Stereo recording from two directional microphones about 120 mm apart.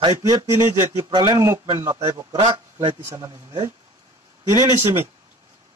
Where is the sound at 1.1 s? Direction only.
35° right (ahead or behind).